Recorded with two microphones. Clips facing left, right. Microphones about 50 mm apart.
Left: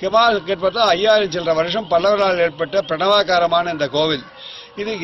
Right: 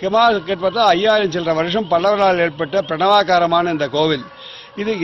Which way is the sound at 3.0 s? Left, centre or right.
Right.